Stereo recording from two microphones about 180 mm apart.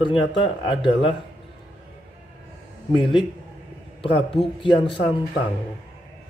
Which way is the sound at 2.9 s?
25° left (ahead or behind).